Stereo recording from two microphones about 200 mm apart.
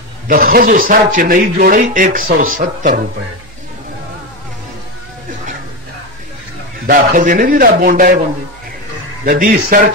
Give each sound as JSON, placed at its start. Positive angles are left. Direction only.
{"t": 0.3, "sound": "a man's voice", "side_deg": -45}
{"t": 6.9, "sound": "a man's voice", "side_deg": -40}
{"t": 9.2, "sound": "a man's voice", "side_deg": -45}